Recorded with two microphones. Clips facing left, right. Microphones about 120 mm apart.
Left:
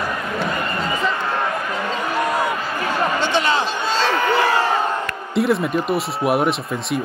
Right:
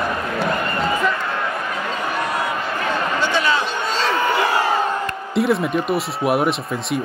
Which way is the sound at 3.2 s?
25° left (ahead or behind).